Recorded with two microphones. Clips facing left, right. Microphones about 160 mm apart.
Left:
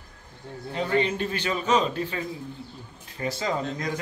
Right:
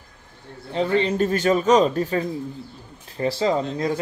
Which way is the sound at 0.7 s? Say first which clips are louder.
Right 5 dB; 30° right (ahead or behind).